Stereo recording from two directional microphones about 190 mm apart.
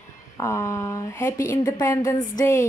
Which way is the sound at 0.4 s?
15° left (ahead or behind).